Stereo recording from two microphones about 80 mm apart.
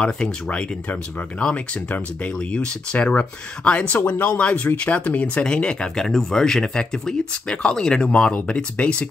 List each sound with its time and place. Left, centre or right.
0.0 s speech: centre